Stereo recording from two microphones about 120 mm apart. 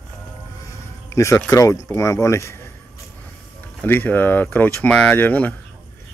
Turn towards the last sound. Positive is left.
turn(degrees=15)  # may be behind; listen again after turning